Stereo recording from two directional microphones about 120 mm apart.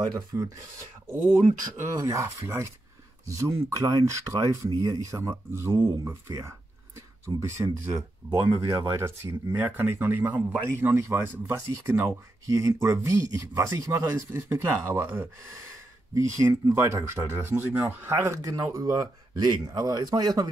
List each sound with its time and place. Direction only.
0.0 s speech: 30° right (ahead or behind)
1.8 s a man's voice: 25° right (ahead or behind)